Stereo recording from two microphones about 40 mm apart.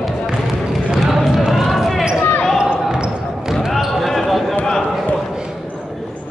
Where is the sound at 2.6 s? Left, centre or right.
Right.